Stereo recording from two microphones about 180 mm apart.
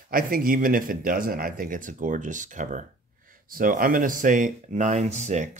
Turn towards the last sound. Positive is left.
turn(degrees=-40)  # may be behind; listen again after turning